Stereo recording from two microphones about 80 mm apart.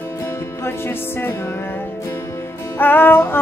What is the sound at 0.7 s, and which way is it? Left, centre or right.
Music, left.